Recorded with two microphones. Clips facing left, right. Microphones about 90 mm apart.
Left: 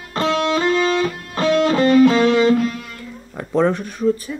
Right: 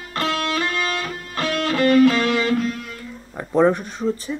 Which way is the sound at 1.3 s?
20° left (ahead or behind).